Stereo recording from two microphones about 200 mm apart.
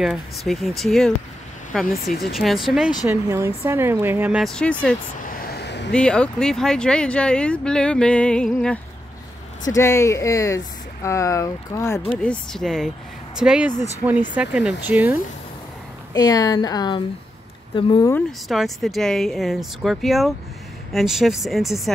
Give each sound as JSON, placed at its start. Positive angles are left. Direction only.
{"t": 0.0, "sound": "speech", "side_deg": 0}
{"t": 3.1, "sound": "a woman's voice", "side_deg": -15}
{"t": 5.4, "sound": "a sound", "side_deg": 55}
{"t": 5.9, "sound": "speech", "side_deg": 5}
{"t": 9.7, "sound": "speech", "side_deg": 15}
{"t": 12.2, "sound": "a woman's voice", "side_deg": 5}
{"t": 16.1, "sound": "speech", "side_deg": 20}
{"t": 18.1, "sound": "speech", "side_deg": 0}